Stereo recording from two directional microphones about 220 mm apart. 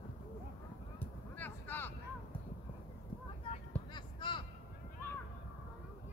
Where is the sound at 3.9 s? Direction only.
20° left (ahead or behind).